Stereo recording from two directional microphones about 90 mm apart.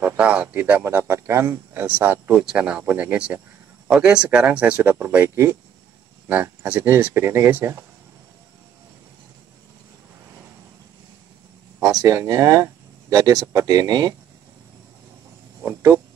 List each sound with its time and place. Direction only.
0.2 s speech: 15° right (ahead or behind)
2.3 s speech: 10° right (ahead or behind)
11.8 s speech: 40° right (ahead or behind)
15.6 s speech: 25° right (ahead or behind)